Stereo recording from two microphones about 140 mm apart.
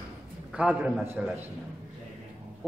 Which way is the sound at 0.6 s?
10° right (ahead or behind).